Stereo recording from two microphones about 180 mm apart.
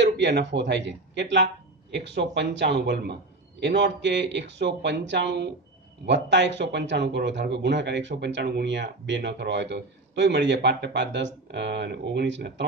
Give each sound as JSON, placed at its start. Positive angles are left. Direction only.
{"t": 0.0, "sound": "speech", "side_deg": -75}